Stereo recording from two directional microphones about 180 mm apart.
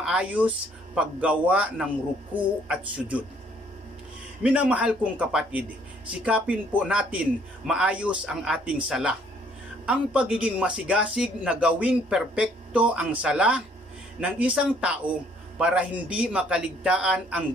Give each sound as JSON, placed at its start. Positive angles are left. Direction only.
{"t": 0.0, "sound": "a man's voice", "side_deg": -5}
{"t": 4.4, "sound": "a man's voice", "side_deg": -5}